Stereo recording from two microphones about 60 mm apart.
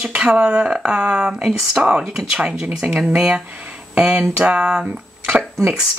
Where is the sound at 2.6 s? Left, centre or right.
Right.